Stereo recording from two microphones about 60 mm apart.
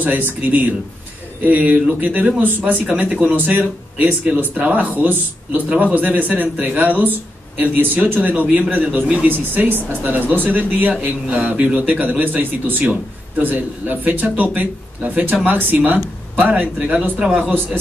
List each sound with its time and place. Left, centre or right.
0.0 s a man's voice: right